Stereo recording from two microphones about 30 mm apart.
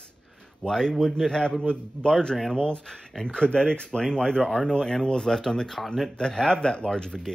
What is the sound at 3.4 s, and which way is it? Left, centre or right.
Speech, left.